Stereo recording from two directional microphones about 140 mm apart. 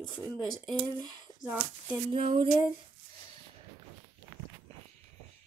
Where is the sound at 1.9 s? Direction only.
40° right (ahead or behind).